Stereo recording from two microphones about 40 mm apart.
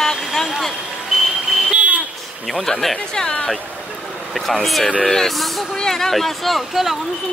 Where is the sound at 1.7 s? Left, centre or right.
Right.